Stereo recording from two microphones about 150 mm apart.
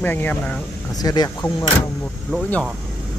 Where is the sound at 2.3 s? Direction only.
5° left (ahead or behind).